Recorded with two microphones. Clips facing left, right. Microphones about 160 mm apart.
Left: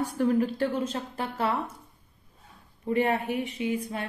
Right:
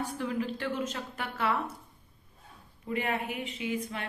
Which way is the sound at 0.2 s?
45° left (ahead or behind).